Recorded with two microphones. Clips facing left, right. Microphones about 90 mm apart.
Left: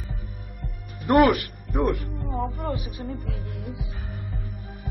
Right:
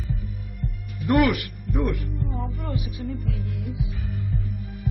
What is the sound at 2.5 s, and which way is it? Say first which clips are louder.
Music: left 1 dB; 40° left (ahead or behind).